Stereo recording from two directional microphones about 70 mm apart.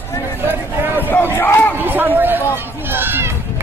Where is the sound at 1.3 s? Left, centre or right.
Left.